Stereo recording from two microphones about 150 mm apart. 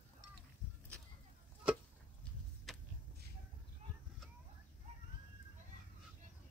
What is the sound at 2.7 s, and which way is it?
Vehicle, centre (ahead or behind).